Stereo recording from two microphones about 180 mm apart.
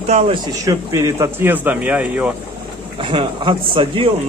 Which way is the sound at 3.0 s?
30° right (ahead or behind).